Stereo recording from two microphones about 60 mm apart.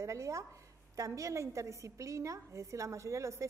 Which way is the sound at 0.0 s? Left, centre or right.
Right.